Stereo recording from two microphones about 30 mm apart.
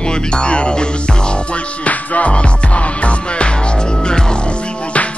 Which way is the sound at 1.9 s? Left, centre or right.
Left.